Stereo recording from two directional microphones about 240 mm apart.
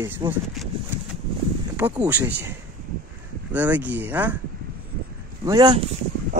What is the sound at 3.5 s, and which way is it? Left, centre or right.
Speech, centre.